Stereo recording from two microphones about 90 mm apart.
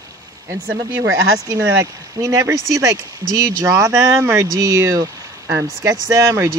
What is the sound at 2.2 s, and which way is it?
Speech, 40° right (ahead or behind).